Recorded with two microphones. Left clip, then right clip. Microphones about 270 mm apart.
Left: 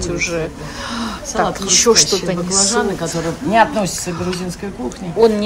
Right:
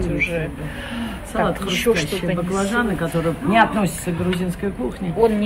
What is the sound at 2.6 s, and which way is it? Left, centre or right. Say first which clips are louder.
Speech: left 5 dB; left.